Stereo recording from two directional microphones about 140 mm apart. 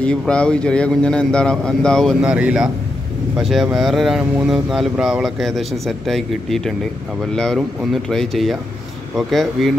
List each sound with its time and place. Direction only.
0.3 s speech: 5° left (ahead or behind)
2.2 s speech: 10° right (ahead or behind)